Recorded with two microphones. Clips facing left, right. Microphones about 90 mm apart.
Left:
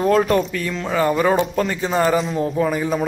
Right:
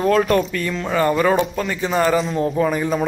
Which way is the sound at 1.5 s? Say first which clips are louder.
Left 3 dB; 35° left (ahead or behind).